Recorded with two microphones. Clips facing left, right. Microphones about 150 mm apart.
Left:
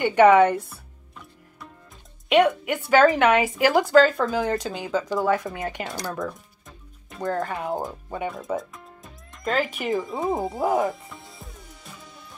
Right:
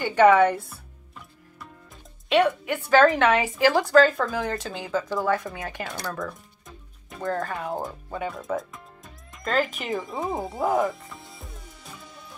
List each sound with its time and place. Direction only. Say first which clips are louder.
0.0 s speech: left 2 dB; 20° left (ahead or behind)
0.7 s music: even; centre (ahead or behind)
2.2 s speech: left 2 dB; 15° left (ahead or behind)
7.4 s speech: left 2 dB; 20° left (ahead or behind)
8.5 s music: left 1 dB; centre (ahead or behind)